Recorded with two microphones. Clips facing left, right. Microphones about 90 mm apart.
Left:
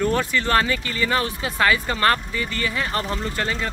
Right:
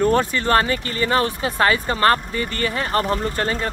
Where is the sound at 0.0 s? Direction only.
40° right (ahead or behind).